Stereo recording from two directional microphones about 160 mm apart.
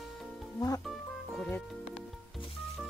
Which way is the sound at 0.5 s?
25° left (ahead or behind).